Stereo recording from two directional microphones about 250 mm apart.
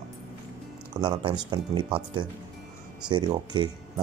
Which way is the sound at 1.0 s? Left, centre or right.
Centre.